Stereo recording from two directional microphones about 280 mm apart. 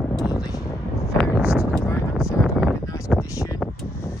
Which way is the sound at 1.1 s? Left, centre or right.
Centre.